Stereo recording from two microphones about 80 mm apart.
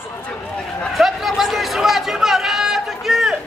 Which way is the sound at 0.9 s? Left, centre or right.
Centre.